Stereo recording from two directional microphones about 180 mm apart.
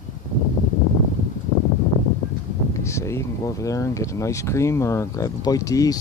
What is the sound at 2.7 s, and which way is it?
Speech, 15° left (ahead or behind).